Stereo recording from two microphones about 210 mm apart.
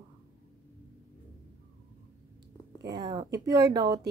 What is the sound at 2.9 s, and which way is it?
Speech, 20° right (ahead or behind).